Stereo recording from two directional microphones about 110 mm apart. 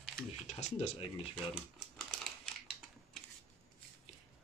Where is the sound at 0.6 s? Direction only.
70° left (ahead or behind).